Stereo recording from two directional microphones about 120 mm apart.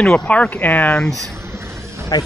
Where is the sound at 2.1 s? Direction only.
30° left (ahead or behind).